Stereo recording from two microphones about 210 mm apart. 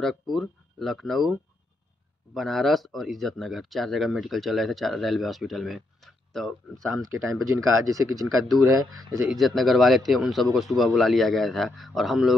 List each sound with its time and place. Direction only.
0.0 s speech: centre (ahead or behind)
2.3 s speech: centre (ahead or behind)
7.0 s speech: 80° right
7.8 s speech: 15° right (ahead or behind)
9.2 s speech: centre (ahead or behind)